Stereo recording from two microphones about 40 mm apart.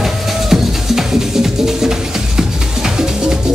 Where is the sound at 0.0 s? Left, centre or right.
Centre.